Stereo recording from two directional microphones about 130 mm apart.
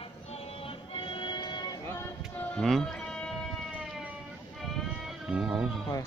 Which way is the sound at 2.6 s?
Centre (ahead or behind).